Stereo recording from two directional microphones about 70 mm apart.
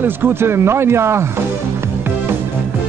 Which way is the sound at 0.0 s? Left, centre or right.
Right.